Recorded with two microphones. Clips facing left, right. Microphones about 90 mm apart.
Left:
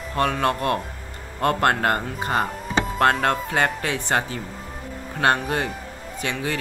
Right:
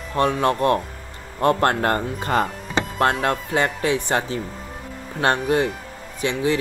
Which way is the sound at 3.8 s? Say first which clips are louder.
Right 3 dB; 20° right (ahead or behind).